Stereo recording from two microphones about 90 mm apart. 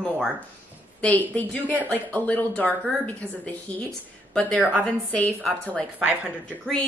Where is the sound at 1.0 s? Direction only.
15° left (ahead or behind).